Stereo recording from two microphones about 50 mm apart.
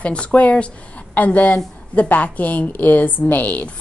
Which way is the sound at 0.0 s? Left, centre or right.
Left.